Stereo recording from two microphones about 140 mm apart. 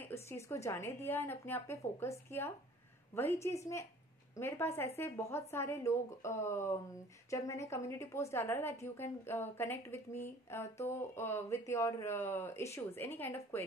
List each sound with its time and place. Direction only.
0.0 s a woman's voice: 20° left (ahead or behind)